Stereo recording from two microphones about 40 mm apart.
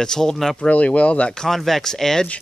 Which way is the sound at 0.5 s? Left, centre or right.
Left.